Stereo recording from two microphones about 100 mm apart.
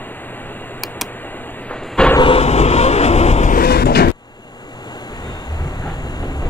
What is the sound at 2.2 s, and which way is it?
Vehicle, 75° left (ahead or behind).